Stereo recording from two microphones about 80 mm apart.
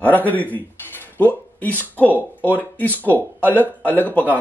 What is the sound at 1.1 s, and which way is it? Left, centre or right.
Speech, left.